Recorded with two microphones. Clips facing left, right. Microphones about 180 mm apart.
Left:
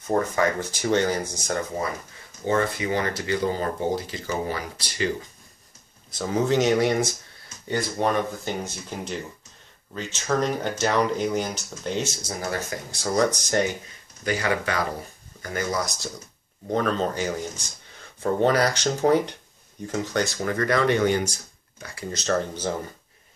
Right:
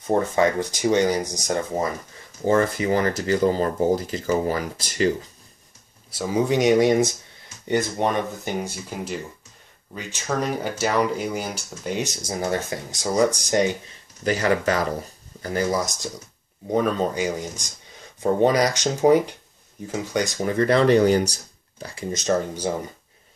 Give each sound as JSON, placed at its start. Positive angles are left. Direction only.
{"t": 0.0, "sound": "speech", "side_deg": -20}
{"t": 2.4, "sound": "speech", "side_deg": -35}
{"t": 6.1, "sound": "speech", "side_deg": -10}
{"t": 12.3, "sound": "speech", "side_deg": -25}
{"t": 13.1, "sound": "speech", "side_deg": -10}
{"t": 14.2, "sound": "speech", "side_deg": -40}
{"t": 16.6, "sound": "speech", "side_deg": -10}
{"t": 22.1, "sound": "speech", "side_deg": -15}